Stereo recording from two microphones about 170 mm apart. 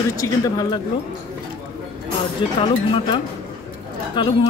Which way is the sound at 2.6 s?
30° left (ahead or behind).